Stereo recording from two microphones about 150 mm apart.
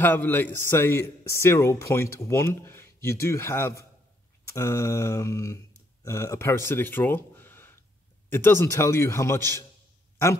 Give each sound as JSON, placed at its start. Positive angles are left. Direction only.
{"t": 0.0, "sound": "speech", "side_deg": 15}
{"t": 4.6, "sound": "a sound", "side_deg": 20}
{"t": 6.0, "sound": "speech", "side_deg": 20}